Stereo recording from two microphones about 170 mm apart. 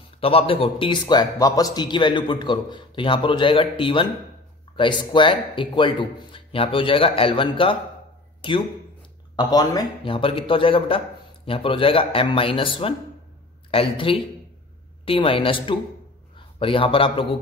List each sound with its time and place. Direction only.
0.2 s a man's voice: 35° left (ahead or behind)